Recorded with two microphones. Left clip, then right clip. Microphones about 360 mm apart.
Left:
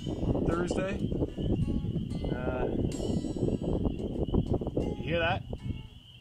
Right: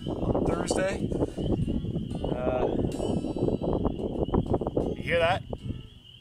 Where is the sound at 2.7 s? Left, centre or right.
Right.